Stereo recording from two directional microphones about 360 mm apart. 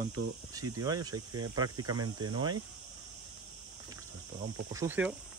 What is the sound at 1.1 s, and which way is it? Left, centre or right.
Speech, right.